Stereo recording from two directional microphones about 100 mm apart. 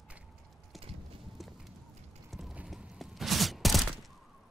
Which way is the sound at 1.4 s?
Centre (ahead or behind).